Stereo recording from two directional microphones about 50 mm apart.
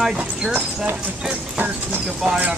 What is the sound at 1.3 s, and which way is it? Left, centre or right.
Music, right.